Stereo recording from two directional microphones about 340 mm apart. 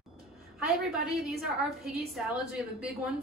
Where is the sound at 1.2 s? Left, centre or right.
Centre.